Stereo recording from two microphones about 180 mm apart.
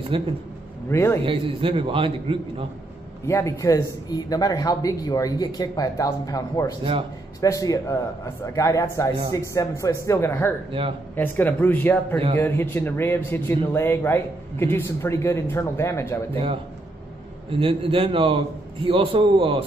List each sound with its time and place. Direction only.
0.1 s a man's voice: 30° right (ahead or behind)
0.8 s speech: 15° left (ahead or behind)
1.2 s a man's voice: 30° right (ahead or behind)
3.3 s speech: 15° left (ahead or behind)
6.8 s a man's voice: 30° right (ahead or behind)
7.3 s speech: 20° left (ahead or behind)
17.5 s a man's voice: 30° right (ahead or behind)